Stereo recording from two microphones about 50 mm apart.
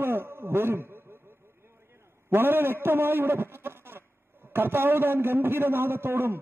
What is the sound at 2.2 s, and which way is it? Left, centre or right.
A man's voice, right.